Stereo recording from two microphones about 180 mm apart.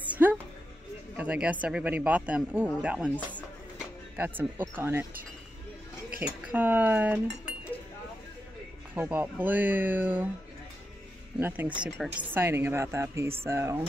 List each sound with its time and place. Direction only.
0.2 s a sound: 15° right (ahead or behind)
1.1 s speech: 10° right (ahead or behind)
6.4 s speech: 10° right (ahead or behind)
8.9 s speech: 10° right (ahead or behind)
11.3 s speech: 10° right (ahead or behind)